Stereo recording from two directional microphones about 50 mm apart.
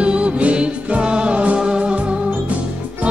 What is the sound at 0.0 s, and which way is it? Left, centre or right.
Music, right.